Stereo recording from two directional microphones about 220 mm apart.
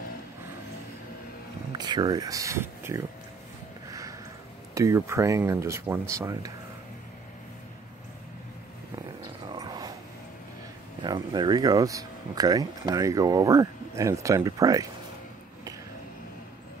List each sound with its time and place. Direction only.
1.7 s speech: 20° right (ahead or behind)
4.7 s speech: 15° right (ahead or behind)
9.6 s dog: 15° right (ahead or behind)
11.0 s speech: 20° right (ahead or behind)